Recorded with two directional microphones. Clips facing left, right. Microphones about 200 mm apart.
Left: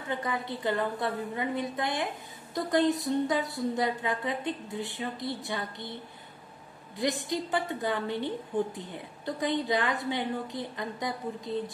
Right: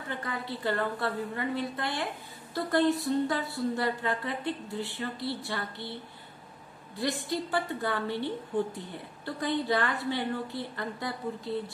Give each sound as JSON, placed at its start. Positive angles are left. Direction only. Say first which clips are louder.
{"t": 0.1, "sound": "a woman's voice", "louder": "left 4 dB", "side_deg": 20}
{"t": 7.0, "sound": "a woman's voice", "louder": "left 1 dB", "side_deg": 20}